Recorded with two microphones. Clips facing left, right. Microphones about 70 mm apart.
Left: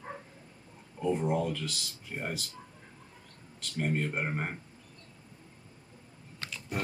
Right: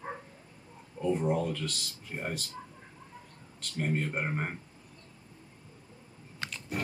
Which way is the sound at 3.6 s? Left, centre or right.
Centre.